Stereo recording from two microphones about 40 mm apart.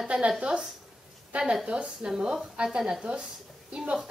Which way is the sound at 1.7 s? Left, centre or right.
Right.